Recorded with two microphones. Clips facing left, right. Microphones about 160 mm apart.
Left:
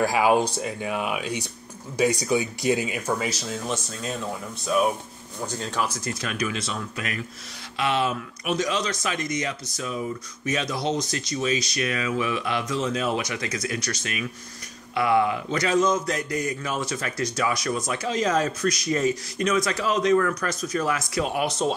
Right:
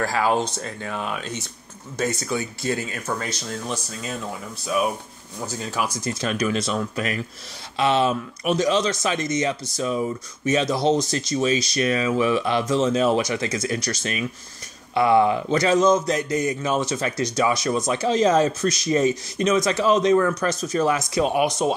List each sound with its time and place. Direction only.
0.0 s speech: 15° left (ahead or behind); by 5.9 s 5° right (ahead or behind)
6.0 s speech: 30° right (ahead or behind); by 21.7 s 15° right (ahead or behind)